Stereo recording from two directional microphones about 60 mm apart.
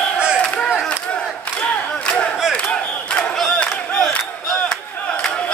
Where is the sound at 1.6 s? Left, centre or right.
Centre.